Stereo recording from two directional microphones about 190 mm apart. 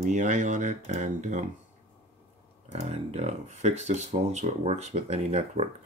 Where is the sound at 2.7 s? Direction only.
35° right (ahead or behind).